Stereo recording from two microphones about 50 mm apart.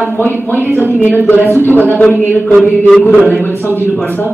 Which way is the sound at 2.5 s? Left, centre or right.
Centre.